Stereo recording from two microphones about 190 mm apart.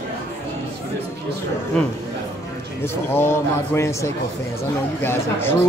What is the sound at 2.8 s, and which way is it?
A man's voice, 10° left (ahead or behind).